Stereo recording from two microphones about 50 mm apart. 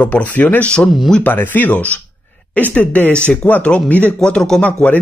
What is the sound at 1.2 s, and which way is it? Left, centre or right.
Speech, left.